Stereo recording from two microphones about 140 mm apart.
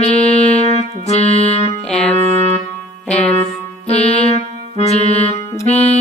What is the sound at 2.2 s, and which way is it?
Music, 50° right (ahead or behind).